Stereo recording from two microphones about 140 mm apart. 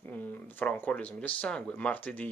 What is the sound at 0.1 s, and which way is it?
Speech, 15° left (ahead or behind).